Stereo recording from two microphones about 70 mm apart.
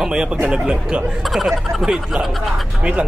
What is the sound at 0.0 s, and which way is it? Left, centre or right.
Speech, centre.